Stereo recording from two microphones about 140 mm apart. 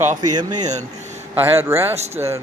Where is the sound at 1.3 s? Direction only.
15° right (ahead or behind).